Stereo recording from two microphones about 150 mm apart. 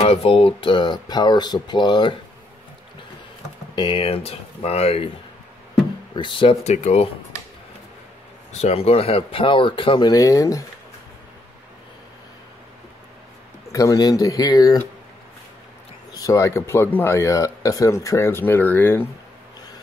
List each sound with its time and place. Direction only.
0.0 s speech: 40° left (ahead or behind)
3.7 s speech: 35° left (ahead or behind)
6.1 s speech: 35° left (ahead or behind)
8.5 s speech: 45° left (ahead or behind); by 10.6 s 20° left (ahead or behind)
13.7 s speech: 20° left (ahead or behind)
16.1 s speech: 20° left (ahead or behind)